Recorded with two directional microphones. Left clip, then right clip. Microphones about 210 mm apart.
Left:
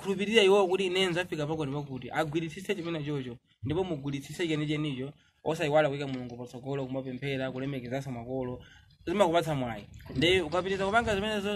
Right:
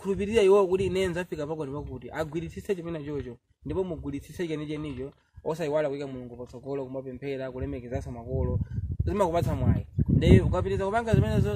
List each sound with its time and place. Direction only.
0.0 s a man's voice: 50° right (ahead or behind)